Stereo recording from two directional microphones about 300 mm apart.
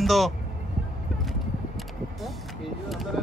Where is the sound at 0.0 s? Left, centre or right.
Centre.